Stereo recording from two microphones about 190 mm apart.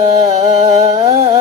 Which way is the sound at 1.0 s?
35° right (ahead or behind).